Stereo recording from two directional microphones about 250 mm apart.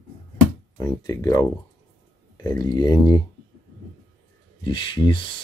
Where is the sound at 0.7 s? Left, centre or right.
Centre.